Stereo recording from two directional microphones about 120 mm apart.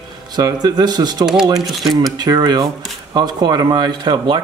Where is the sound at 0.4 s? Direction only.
30° right (ahead or behind).